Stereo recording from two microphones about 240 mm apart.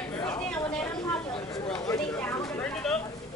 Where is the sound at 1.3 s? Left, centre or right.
Left.